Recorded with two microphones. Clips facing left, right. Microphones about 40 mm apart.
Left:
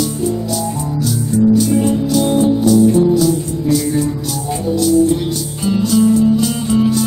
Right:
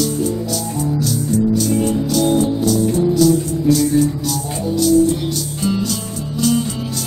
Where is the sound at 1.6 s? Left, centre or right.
Centre.